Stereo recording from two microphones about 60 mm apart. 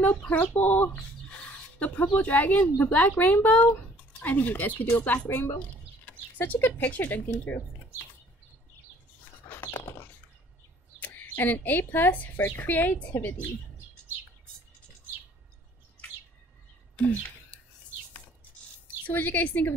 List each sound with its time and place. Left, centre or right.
0.3 s speech: left
9.5 s dog: left
11.0 s a woman's voice: left
19.0 s speech: left